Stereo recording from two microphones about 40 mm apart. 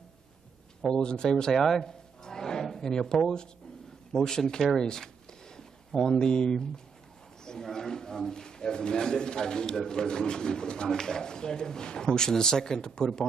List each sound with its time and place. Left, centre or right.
0.8 s a man's voice: left
1.9 s a sound: centre
4.1 s a man's voice: centre